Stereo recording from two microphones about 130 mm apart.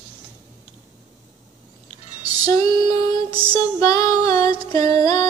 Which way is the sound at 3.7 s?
25° left (ahead or behind).